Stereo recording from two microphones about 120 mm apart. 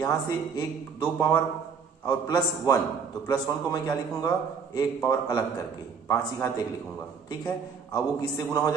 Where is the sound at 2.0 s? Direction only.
35° left (ahead or behind).